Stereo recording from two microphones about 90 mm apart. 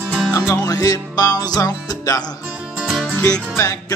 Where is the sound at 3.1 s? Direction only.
15° left (ahead or behind).